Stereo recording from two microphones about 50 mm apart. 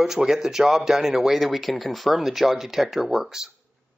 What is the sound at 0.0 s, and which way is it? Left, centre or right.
Speech, centre.